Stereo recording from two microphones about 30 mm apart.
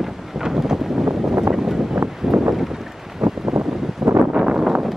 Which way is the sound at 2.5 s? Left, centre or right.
Centre.